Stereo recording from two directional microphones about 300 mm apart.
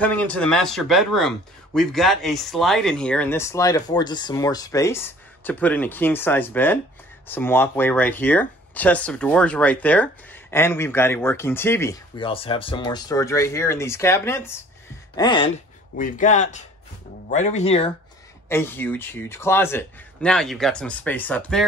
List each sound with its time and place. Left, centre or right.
0.0 s speech: centre
16.0 s speech: left
18.5 s speech: centre